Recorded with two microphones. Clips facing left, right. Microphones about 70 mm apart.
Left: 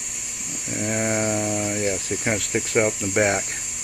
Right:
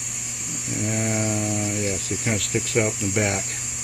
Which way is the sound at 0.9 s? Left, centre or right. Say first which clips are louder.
Left 3 dB; left.